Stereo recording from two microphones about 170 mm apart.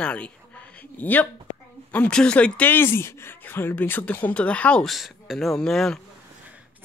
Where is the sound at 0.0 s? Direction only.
10° left (ahead or behind).